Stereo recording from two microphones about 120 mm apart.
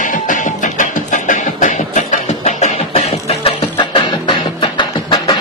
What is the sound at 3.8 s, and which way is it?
Music, 45° left (ahead or behind).